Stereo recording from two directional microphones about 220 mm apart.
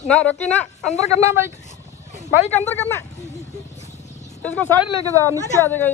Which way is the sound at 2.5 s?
10° left (ahead or behind).